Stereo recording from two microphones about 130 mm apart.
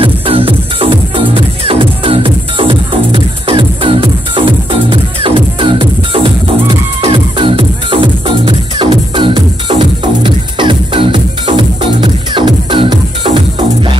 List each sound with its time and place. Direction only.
0.0 s music: 45° right (ahead or behind)